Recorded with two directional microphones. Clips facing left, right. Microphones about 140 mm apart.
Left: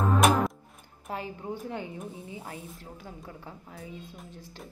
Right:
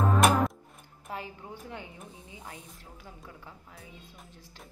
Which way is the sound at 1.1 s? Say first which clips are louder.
Left 5 dB; 35° left (ahead or behind).